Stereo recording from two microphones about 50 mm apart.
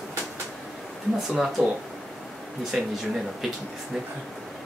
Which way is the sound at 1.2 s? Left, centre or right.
Centre.